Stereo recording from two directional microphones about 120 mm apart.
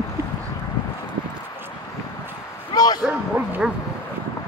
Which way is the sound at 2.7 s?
35° left (ahead or behind).